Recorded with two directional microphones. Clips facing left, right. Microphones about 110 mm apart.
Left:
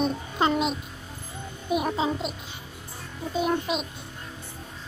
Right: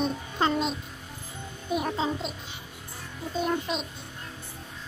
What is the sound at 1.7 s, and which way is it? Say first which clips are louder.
Music: left 3 dB; 15° left (ahead or behind).